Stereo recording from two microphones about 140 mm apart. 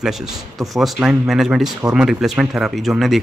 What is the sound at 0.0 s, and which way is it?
Speech, 5° right (ahead or behind).